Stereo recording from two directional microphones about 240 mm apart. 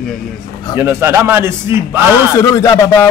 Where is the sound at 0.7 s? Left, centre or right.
Centre.